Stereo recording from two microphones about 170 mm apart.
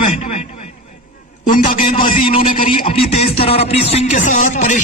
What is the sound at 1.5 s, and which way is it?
Speech, 55° left (ahead or behind).